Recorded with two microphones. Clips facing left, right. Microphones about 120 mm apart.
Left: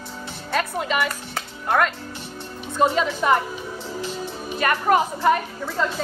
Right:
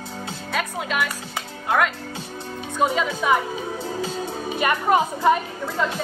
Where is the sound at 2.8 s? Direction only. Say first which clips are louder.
Left 2 dB; centre (ahead or behind).